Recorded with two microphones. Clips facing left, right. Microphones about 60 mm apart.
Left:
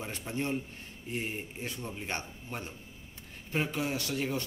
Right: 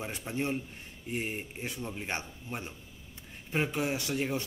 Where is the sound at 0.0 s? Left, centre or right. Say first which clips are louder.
Right 1 dB; centre.